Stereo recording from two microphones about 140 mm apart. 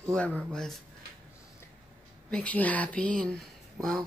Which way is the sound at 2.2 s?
10° left (ahead or behind).